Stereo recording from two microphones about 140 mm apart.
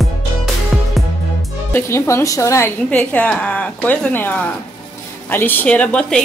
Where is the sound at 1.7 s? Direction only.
20° left (ahead or behind).